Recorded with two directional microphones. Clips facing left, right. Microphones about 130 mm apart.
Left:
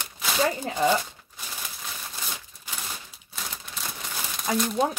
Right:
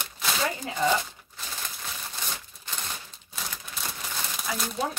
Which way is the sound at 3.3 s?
Centre (ahead or behind).